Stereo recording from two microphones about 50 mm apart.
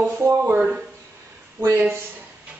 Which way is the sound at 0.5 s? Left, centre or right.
Centre.